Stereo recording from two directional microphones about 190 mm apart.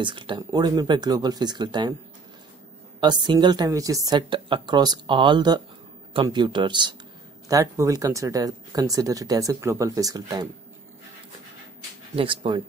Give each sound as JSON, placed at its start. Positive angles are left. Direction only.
{"t": 0.0, "sound": "a woman's voice", "side_deg": -25}
{"t": 3.0, "sound": "a woman's voice", "side_deg": -25}
{"t": 12.2, "sound": "a woman's voice", "side_deg": -25}